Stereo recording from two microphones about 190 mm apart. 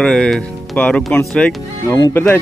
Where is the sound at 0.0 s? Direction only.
Centre (ahead or behind).